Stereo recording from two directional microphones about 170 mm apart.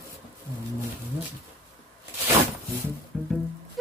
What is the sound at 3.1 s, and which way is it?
Music, centre (ahead or behind).